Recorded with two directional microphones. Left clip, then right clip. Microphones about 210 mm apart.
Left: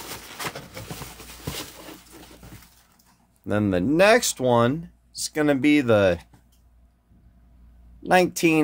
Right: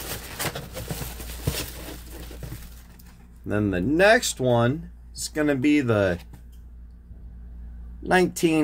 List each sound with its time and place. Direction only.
0.1 s a sound: centre (ahead or behind)
3.4 s speech: 50° left (ahead or behind); by 6.1 s 35° left (ahead or behind)
8.0 s speech: 30° left (ahead or behind)